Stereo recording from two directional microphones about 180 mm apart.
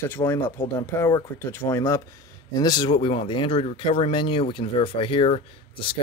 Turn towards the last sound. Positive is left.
turn(degrees=30)  # may be behind; listen again after turning